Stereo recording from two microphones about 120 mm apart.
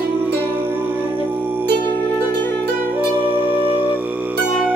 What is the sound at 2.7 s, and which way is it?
Music, 15° right (ahead or behind).